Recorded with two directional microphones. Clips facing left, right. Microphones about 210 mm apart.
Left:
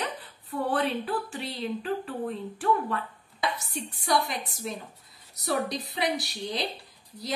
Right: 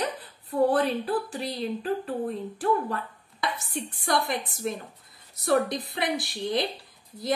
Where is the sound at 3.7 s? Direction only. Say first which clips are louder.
Right 1 dB; 50° right (ahead or behind).